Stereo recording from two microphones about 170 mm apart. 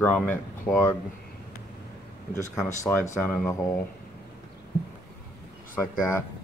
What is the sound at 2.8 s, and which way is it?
Speech, 15° left (ahead or behind).